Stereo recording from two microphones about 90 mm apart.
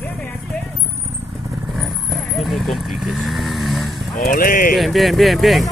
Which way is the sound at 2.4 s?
Centre (ahead or behind).